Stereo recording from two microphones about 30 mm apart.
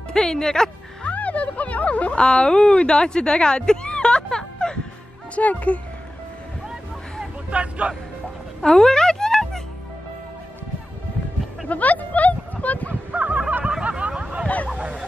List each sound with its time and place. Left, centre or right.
0.1 s speech: left
1.1 s speech: left
2.1 s speech: left
5.3 s speech: left
7.5 s speech: right
8.6 s speech: left
9.3 s music: centre
11.7 s speech: left
13.1 s fowl: right
13.8 s a sound: right